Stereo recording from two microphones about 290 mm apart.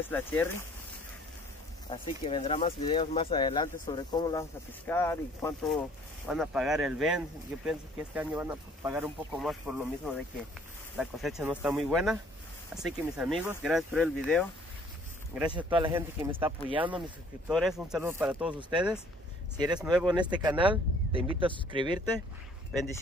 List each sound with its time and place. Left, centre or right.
0.1 s speech: centre
1.9 s speech: centre
15.5 s speech: centre
17.5 s speech: centre
18.6 s speech: centre